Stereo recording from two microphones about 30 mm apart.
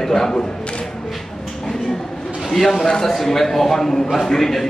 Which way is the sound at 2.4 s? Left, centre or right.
Centre.